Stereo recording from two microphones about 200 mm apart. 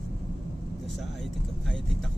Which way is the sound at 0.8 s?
Centre (ahead or behind).